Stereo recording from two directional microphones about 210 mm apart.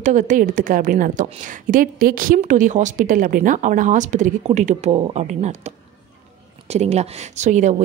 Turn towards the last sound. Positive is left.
turn(degrees=-35)  # may be behind; listen again after turning